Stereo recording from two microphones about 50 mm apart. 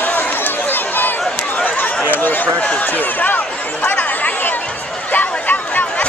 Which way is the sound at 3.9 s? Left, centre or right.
Left.